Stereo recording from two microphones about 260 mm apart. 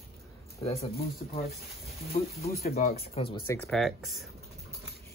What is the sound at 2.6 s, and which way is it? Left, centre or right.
Speech, left.